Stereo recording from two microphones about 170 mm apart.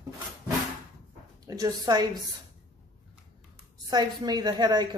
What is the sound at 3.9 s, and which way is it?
A woman's voice, 25° right (ahead or behind).